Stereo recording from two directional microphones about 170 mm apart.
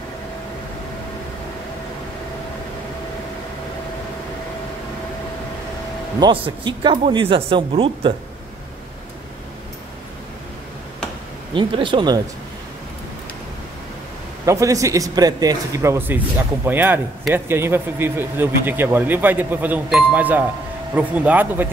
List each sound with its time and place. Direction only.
6.1 s speech: 30° right (ahead or behind)
11.5 s a man's voice: 30° right (ahead or behind)
14.4 s a man's voice: 20° right (ahead or behind)